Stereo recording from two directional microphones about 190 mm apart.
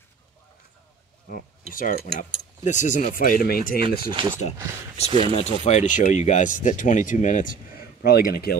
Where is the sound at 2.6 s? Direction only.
40° left (ahead or behind).